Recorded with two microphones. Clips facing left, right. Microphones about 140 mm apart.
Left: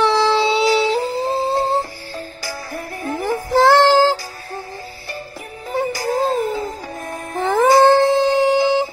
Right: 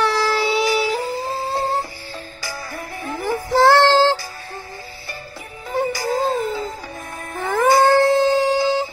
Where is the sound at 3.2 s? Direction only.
20° left (ahead or behind).